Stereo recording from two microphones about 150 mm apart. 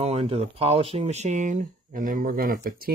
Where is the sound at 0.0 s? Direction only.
45° right (ahead or behind).